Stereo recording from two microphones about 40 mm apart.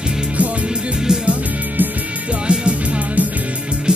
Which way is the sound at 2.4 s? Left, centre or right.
Right.